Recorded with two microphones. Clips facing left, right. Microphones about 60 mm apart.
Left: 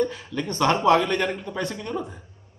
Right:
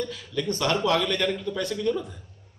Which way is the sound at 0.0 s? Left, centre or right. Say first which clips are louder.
Left 3 dB; left.